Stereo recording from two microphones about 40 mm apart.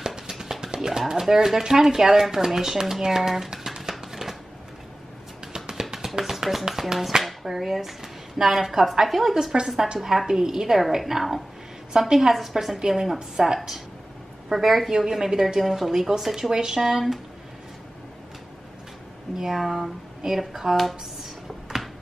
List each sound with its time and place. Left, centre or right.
0.0 s music: centre
0.7 s speech: centre
4.1 s shuffling cards: centre
5.4 s music: centre
6.7 s speech: centre
14.9 s speech: centre
15.6 s speech: centre
19.3 s speech: centre